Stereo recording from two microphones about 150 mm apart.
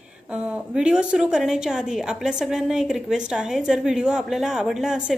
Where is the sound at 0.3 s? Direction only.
5° right (ahead or behind).